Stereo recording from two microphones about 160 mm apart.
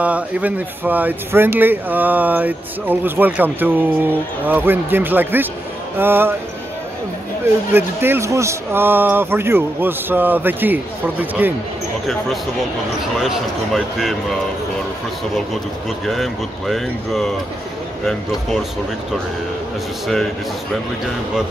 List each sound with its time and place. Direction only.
0.0 s speech: 10° right (ahead or behind)
7.7 s speech: 15° right (ahead or behind)
13.2 s speech: centre (ahead or behind)
16.1 s speech: centre (ahead or behind)